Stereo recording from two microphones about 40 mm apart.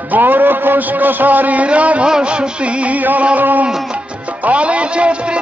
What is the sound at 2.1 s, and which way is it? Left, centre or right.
Music, right.